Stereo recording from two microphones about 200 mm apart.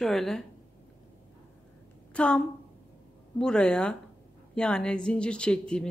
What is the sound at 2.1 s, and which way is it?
Speech, 5° left (ahead or behind).